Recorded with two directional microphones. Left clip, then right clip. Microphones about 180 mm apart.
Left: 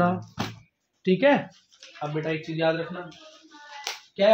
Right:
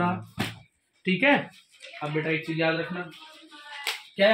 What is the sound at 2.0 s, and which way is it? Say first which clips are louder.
Speech: left 1 dB; 25° left (ahead or behind).